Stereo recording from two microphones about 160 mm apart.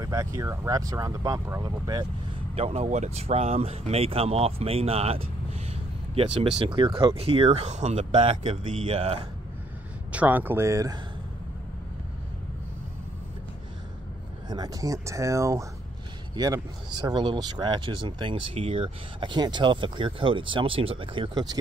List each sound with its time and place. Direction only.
0.0 s speech: 20° right (ahead or behind)
2.5 s speech: 40° right (ahead or behind)
10.1 s speech: 10° right (ahead or behind)
14.5 s speech: 25° right (ahead or behind)